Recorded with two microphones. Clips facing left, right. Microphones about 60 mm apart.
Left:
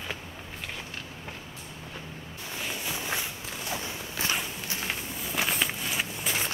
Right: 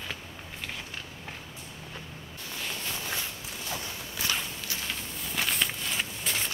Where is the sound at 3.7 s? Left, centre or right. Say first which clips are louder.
Left 2 dB; left.